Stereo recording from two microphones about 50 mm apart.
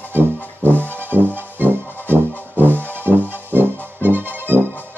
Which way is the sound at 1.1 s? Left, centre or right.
Right.